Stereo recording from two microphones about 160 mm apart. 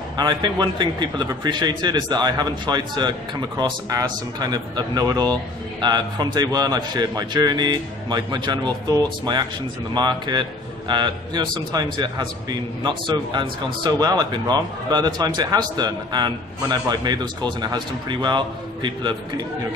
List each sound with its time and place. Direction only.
0.2 s a man's voice: 25° right (ahead or behind)